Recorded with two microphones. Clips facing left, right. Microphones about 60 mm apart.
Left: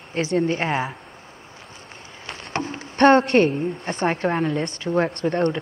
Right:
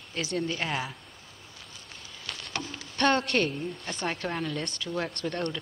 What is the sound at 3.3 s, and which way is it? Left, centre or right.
Speech, left.